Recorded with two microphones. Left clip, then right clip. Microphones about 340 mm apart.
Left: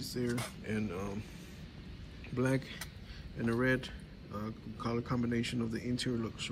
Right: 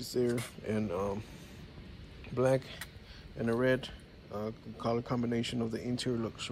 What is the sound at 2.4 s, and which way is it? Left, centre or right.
Speech, centre.